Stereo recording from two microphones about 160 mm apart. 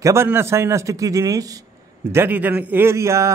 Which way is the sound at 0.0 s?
15° right (ahead or behind).